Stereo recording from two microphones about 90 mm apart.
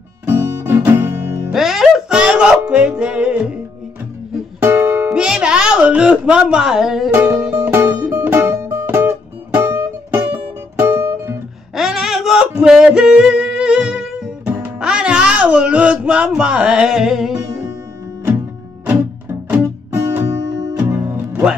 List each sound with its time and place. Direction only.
0.3 s guitar: 25° right (ahead or behind)
1.5 s music: 5° right (ahead or behind)
4.6 s music: 25° right (ahead or behind)
5.1 s music: 10° right (ahead or behind)
7.6 s music: 25° right (ahead or behind)
11.7 s a sound: 5° right (ahead or behind)
14.4 s music: 20° right (ahead or behind)
14.8 s music: 10° right (ahead or behind)
18.9 s music: 25° right (ahead or behind)
20.5 s music: 45° right (ahead or behind)
20.9 s music: 20° right (ahead or behind)